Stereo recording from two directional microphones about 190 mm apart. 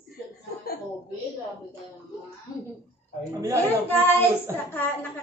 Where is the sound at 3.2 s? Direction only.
15° right (ahead or behind).